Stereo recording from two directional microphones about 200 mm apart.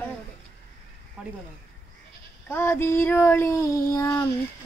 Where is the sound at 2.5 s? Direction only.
10° left (ahead or behind).